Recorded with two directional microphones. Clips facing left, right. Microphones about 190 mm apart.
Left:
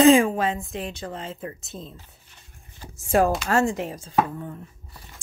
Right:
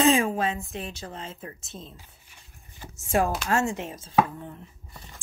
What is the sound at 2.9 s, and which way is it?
Speech, 35° left (ahead or behind).